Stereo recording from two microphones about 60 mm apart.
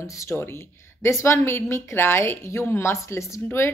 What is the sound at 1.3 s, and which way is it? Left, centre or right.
A woman's voice, left.